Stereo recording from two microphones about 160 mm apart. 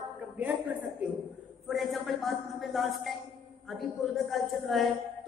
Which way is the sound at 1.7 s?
Centre (ahead or behind).